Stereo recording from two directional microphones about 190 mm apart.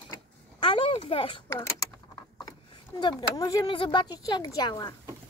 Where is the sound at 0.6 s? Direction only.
25° left (ahead or behind).